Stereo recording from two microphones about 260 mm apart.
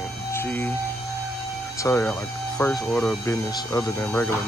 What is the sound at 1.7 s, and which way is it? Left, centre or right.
Speech, centre.